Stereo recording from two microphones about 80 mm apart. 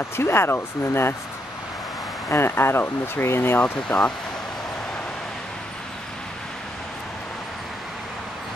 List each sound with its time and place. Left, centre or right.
0.1 s speech: left
2.2 s speech: left